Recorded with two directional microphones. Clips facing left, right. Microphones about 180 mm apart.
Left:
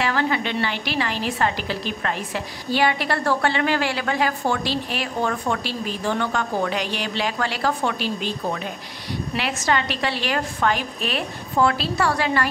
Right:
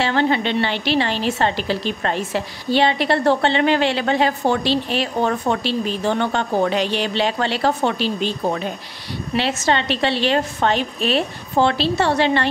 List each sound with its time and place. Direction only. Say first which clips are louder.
0.0 s a woman's voice: right 4 dB; 30° right (ahead or behind)